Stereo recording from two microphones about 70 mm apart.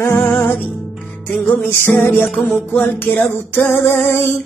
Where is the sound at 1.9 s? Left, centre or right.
Left.